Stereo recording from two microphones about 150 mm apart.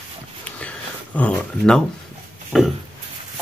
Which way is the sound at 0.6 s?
10° left (ahead or behind).